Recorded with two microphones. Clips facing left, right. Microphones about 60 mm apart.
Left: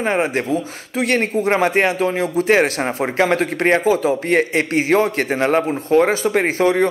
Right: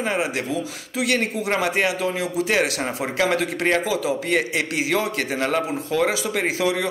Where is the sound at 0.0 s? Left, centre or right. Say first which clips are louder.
Left 5 dB; left.